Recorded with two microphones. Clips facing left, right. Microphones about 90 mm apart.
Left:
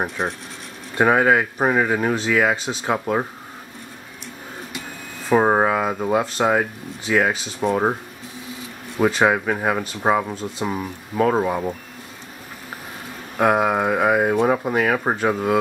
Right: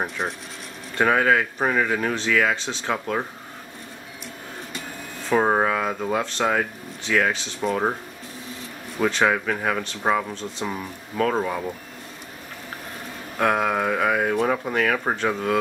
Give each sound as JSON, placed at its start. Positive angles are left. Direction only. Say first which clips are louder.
{"t": 0.9, "sound": "speech", "louder": "left 3 dB", "side_deg": 15}
{"t": 5.3, "sound": "speech", "louder": "left 3 dB", "side_deg": 15}
{"t": 9.0, "sound": "speech", "louder": "left 3 dB", "side_deg": 15}
{"t": 13.4, "sound": "speech", "louder": "left 4 dB", "side_deg": 15}